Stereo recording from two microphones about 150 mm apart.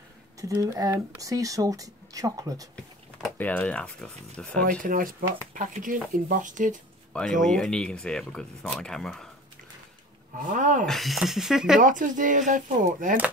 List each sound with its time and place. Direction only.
0.4 s speech: 20° right (ahead or behind)
2.7 s speech: 5° left (ahead or behind)
4.6 s speech: 65° right (ahead or behind)
7.4 s speech: 5° left (ahead or behind)
10.5 s speech: 60° right (ahead or behind)
10.9 s speech: centre (ahead or behind)
11.8 s speech: 60° right (ahead or behind)